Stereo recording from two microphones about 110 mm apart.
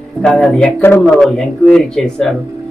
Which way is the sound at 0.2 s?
5° left (ahead or behind).